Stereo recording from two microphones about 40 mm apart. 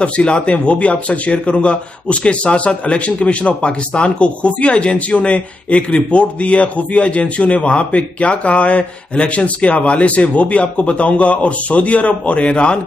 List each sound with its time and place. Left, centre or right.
0.0 s a man's voice: left